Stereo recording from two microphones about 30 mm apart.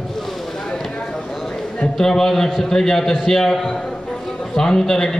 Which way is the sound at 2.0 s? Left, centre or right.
Centre.